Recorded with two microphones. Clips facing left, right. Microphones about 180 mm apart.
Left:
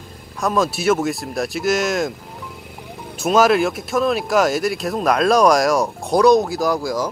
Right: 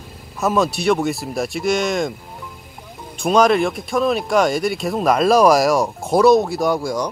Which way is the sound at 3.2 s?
5° left (ahead or behind).